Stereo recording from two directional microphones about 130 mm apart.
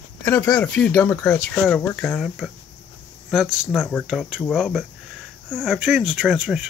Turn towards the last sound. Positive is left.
turn(degrees=-5)  # may be behind; listen again after turning